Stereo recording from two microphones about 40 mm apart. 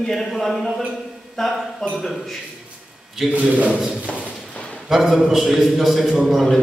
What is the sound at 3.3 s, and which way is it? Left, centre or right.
Speech, right.